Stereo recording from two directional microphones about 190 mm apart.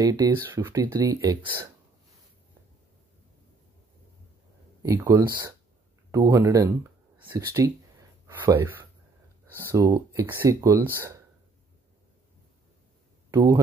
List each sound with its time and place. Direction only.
0.0 s speech: 15° right (ahead or behind)
4.8 s speech: 15° right (ahead or behind)
13.3 s speech: 20° right (ahead or behind)